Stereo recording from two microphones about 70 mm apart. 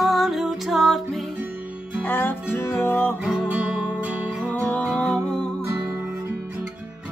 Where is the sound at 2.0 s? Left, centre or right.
Left.